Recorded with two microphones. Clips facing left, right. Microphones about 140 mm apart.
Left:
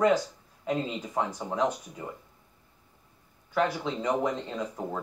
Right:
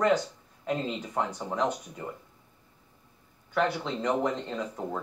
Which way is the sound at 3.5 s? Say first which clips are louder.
Even; 5° left (ahead or behind).